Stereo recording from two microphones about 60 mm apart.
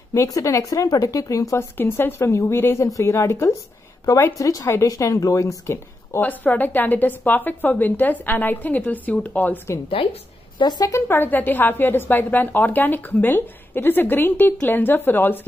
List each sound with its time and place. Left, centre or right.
0.1 s speech: left
1.6 s speech: left
4.4 s speech: left
6.2 s a woman's voice: left
10.9 s a woman's voice: left